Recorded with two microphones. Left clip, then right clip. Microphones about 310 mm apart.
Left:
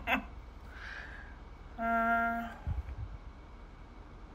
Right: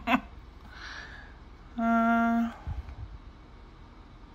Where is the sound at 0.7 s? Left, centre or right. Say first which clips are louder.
Right 3 dB; centre.